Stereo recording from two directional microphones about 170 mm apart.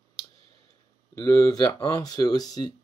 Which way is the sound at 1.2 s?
20° left (ahead or behind).